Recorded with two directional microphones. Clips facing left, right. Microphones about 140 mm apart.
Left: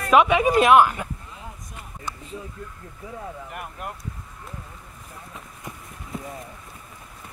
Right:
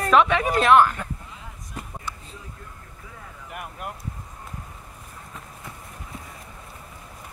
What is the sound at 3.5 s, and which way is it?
Vehicle, centre (ahead or behind).